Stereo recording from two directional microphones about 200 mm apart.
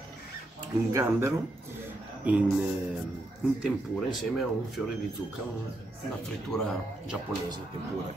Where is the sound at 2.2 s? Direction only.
5° right (ahead or behind).